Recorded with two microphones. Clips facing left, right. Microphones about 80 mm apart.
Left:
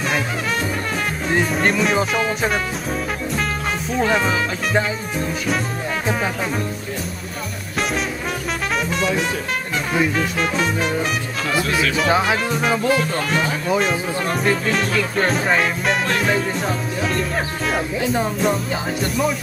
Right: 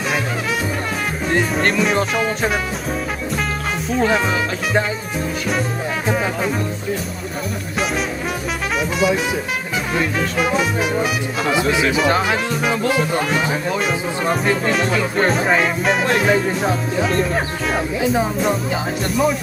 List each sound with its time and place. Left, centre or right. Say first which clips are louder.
1.3 s speech: right 1 dB; centre
3.9 s speech: right 1 dB; centre
6.0 s speech: right 3 dB; centre
8.7 s speech: right 3 dB; centre
11.5 s speech: right 2 dB; centre
12.0 s speech: right 1 dB; centre
12.9 s speech: right 1 dB; centre